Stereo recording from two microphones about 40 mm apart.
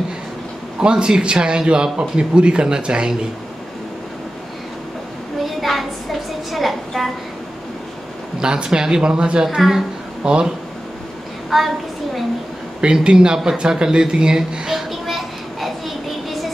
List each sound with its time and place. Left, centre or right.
0.7 s a man's voice: right
5.4 s a sound: centre
8.4 s a man's voice: right
9.6 s speech: centre
10.2 s a man's voice: right
11.5 s a woman's voice: centre
12.9 s a man's voice: right
14.9 s a sound: centre